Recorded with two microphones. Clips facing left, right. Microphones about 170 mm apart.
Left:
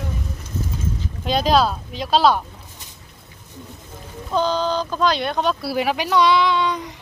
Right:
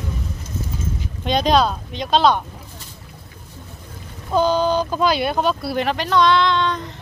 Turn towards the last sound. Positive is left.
turn(degrees=10)  # may be behind; listen again after turning